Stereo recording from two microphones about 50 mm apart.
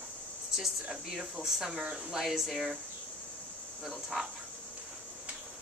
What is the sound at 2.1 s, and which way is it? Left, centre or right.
Speech, centre.